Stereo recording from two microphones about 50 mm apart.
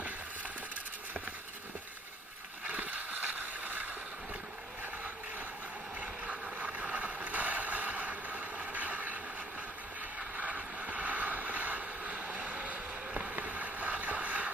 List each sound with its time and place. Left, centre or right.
2.6 s vehicle: right
5.9 s vehicle: right
10.3 s vehicle: right
13.4 s boat: right